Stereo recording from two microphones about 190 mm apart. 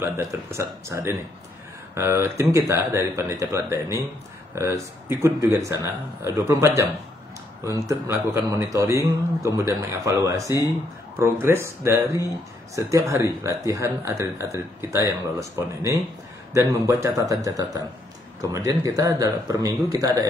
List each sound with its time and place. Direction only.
0.0 s speech: 15° right (ahead or behind)